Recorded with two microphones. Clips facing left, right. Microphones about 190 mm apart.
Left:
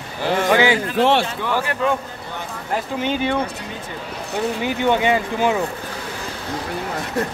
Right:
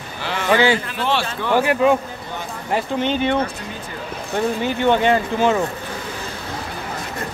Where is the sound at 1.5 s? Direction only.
15° right (ahead or behind).